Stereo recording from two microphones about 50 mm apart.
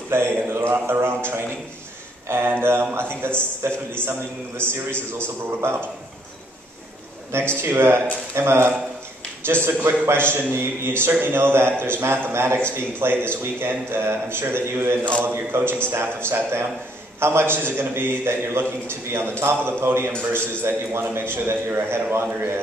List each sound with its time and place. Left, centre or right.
0.1 s mantra: right
0.5 s a man's voice: right
7.3 s speech: right
10.0 s a man's voice: right
17.6 s a man's voice: right